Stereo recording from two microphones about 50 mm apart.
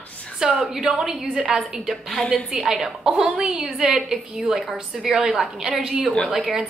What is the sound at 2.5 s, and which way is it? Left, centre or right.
A woman's voice, centre.